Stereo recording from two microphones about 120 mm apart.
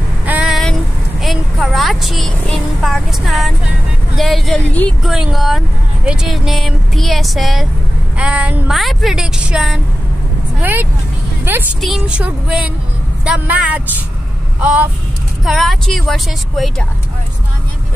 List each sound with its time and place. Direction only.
0.3 s a sound: 10° right (ahead or behind)
1.2 s vehicle: centre (ahead or behind)
4.2 s speech: centre (ahead or behind)
10.6 s speech: 15° right (ahead or behind)
11.8 s speech: 5° right (ahead or behind)
15.4 s speech: centre (ahead or behind)